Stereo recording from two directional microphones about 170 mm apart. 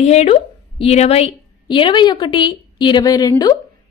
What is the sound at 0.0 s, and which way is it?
A woman's voice, 40° left (ahead or behind).